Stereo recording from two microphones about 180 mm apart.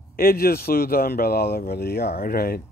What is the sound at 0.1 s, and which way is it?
Speech, 55° left (ahead or behind).